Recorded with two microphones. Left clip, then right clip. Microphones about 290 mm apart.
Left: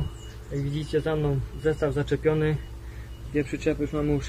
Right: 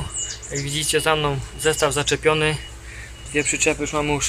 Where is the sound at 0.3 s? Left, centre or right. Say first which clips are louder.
Right 3 dB; right.